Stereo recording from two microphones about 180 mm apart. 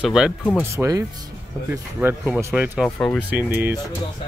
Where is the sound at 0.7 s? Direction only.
15° right (ahead or behind).